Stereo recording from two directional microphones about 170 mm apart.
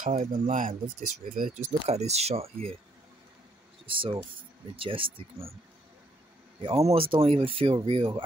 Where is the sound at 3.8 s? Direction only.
30° right (ahead or behind).